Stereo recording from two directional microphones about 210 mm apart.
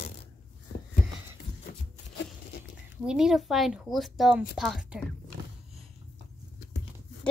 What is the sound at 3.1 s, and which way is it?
Speech, centre (ahead or behind).